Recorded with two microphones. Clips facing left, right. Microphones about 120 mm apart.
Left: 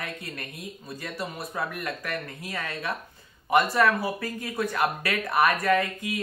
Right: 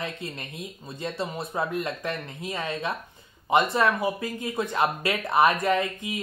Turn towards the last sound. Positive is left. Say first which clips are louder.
# left 1 dB
turn(degrees=-20)  # may be behind; listen again after turning